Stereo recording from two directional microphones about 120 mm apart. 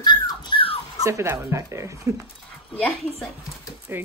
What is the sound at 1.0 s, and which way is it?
Speech, 25° right (ahead or behind).